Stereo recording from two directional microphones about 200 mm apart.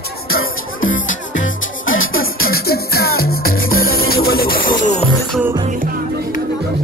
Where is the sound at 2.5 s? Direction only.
50° left (ahead or behind).